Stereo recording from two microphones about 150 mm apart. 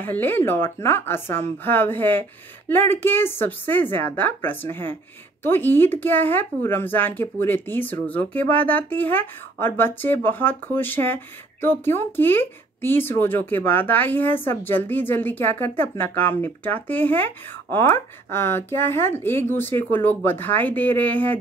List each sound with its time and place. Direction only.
0.0 s speech: 15° left (ahead or behind)